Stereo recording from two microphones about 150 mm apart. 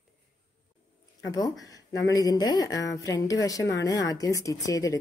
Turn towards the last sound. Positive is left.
turn(degrees=20)  # may be behind; listen again after turning